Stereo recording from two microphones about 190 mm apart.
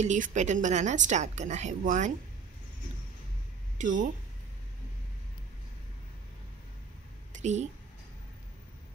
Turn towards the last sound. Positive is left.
turn(degrees=-35)  # may be behind; listen again after turning